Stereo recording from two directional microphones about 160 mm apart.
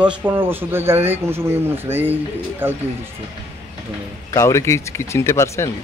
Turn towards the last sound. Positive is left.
turn(degrees=20)  # may be behind; listen again after turning